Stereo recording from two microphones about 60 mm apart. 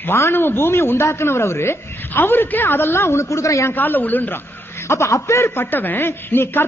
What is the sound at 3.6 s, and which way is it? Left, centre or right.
Speech, left.